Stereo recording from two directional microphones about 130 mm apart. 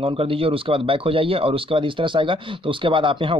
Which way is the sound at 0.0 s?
45° right (ahead or behind).